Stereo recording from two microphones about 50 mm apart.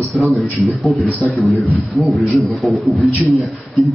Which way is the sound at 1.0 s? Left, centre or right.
Left.